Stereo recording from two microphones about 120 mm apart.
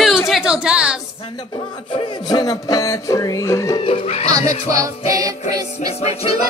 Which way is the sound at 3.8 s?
50° left (ahead or behind).